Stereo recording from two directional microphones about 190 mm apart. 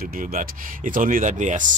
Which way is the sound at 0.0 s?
50° right (ahead or behind).